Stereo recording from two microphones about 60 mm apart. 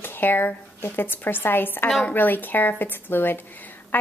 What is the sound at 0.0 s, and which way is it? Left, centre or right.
A woman's voice, left.